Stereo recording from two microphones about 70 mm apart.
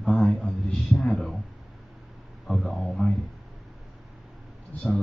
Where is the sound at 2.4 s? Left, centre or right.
Centre.